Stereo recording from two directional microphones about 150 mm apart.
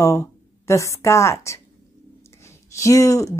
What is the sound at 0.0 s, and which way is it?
A woman's voice, 20° left (ahead or behind).